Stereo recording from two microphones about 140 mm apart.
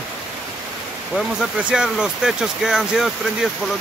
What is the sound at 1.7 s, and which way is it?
Speech, 5° right (ahead or behind).